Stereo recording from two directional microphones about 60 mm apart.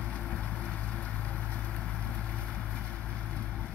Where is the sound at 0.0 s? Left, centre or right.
Left.